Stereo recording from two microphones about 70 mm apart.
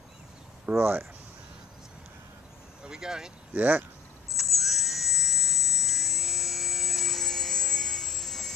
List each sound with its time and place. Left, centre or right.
0.7 s speech: right
2.8 s speech: centre
3.5 s speech: right
4.4 s dental drill: centre